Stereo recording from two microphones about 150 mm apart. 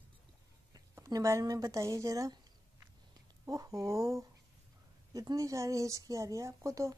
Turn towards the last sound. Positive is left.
turn(degrees=-20)  # may be behind; listen again after turning